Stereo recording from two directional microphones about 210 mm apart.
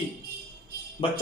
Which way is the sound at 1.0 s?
25° left (ahead or behind).